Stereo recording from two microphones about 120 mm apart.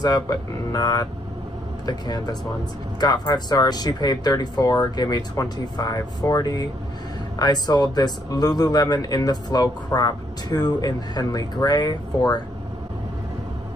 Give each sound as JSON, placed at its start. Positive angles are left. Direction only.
{"t": 0.0, "sound": "speech", "side_deg": 30}